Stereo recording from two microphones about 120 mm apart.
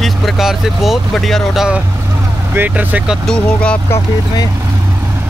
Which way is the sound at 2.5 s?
15° right (ahead or behind).